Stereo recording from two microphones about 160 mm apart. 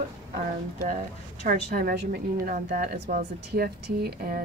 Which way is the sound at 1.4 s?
65° right (ahead or behind).